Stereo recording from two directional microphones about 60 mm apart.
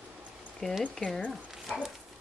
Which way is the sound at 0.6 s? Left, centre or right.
Centre.